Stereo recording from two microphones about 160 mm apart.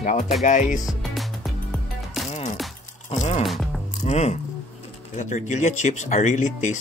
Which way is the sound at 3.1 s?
45° left (ahead or behind).